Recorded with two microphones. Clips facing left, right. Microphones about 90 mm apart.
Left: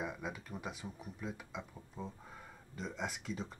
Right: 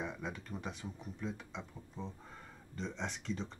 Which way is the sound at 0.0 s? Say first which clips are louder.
Even; 5° left (ahead or behind).